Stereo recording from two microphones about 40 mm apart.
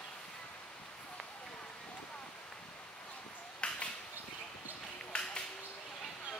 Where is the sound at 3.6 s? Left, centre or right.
Left.